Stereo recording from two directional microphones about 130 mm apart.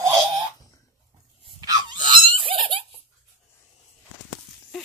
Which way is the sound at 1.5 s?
30° right (ahead or behind).